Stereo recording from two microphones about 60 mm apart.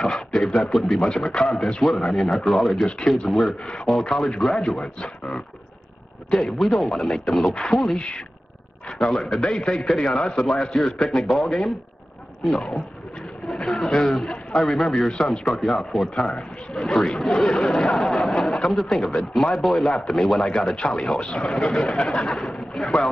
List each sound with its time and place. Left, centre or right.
0.0 s speech: centre
2.8 s speech: centre
3.3 s speech: centre
6.3 s a man's voice: centre
10.1 s speech: centre